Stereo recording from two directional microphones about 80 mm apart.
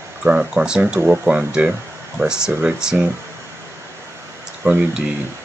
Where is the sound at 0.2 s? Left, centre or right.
Centre.